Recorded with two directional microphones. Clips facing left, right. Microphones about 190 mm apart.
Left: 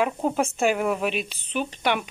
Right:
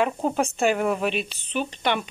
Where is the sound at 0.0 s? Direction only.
5° left (ahead or behind).